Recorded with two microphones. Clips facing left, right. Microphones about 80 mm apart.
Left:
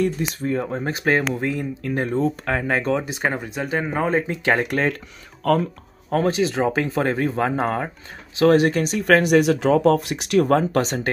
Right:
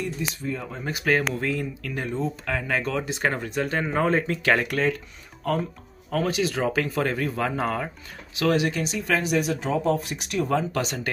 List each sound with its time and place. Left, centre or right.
0.3 s speech: left
1.9 s speech: left
3.1 s speech: centre
4.3 s speech: left
5.4 s speech: left
6.0 s speech: left
10.5 s speech: left